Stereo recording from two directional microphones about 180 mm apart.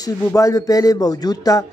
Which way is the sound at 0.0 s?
20° left (ahead or behind).